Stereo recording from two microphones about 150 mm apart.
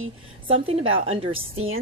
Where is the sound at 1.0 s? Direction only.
40° right (ahead or behind).